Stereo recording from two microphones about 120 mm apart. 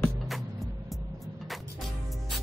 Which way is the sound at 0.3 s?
Centre (ahead or behind).